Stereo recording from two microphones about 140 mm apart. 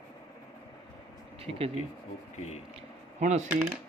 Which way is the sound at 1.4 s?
45° right (ahead or behind).